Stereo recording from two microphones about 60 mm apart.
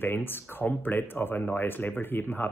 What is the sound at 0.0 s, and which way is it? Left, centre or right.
Speech, left.